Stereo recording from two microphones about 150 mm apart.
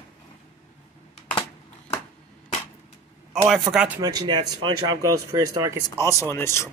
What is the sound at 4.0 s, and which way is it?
Speech, 25° right (ahead or behind).